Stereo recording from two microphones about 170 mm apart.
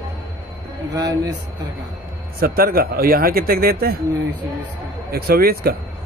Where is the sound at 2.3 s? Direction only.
60° right (ahead or behind).